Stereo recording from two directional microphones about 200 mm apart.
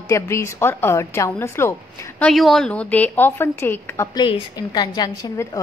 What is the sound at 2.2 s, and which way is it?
A woman's voice, centre (ahead or behind).